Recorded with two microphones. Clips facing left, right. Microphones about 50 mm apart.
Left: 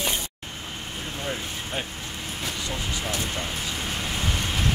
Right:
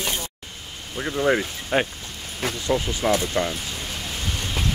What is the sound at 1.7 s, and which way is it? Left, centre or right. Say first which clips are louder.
Speech: right 11 dB; right.